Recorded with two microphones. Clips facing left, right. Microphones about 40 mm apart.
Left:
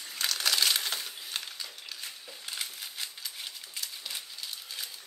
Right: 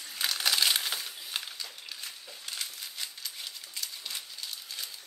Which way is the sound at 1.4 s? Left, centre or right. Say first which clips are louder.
Even; centre.